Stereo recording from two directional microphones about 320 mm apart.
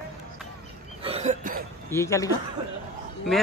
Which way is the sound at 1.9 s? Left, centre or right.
Centre.